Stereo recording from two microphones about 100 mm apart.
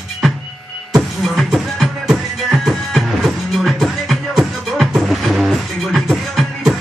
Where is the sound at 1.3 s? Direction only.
Centre (ahead or behind).